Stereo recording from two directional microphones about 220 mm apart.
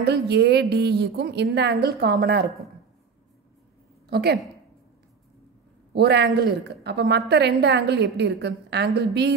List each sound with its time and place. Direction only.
0.0 s a woman's voice: 50° right (ahead or behind)
4.1 s a woman's voice: 45° right (ahead or behind)
5.9 s a woman's voice: 50° right (ahead or behind)